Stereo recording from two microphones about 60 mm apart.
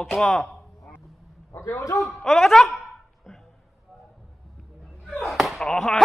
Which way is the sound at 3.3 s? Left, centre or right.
Centre.